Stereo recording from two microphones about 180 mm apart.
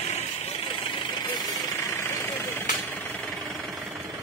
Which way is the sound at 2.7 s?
5° left (ahead or behind).